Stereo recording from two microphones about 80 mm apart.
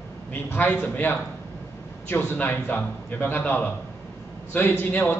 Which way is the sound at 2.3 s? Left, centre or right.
Left.